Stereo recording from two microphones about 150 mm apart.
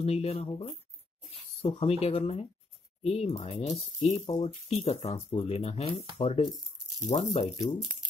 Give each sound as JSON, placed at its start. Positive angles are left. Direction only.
{"t": 0.0, "sound": "speech", "side_deg": 45}
{"t": 7.0, "sound": "speech", "side_deg": 25}